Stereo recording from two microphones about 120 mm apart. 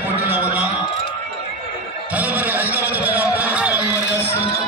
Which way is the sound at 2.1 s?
15° right (ahead or behind).